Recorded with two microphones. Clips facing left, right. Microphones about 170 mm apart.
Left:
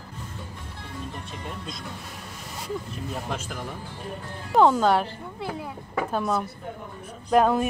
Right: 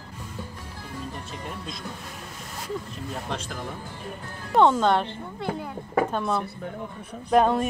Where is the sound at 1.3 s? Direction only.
Centre (ahead or behind).